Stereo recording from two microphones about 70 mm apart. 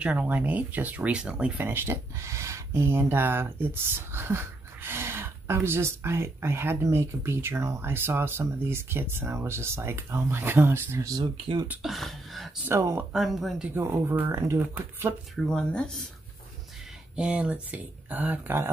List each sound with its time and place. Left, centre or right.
0.0 s speech: centre
1.6 s speech: right
11.1 s speech: right
11.8 s speech: centre
13.7 s speech: right
15.3 s speech: centre
17.1 s speech: centre